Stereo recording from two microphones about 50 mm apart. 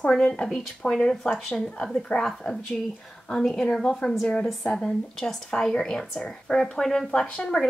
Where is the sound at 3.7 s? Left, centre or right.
Centre.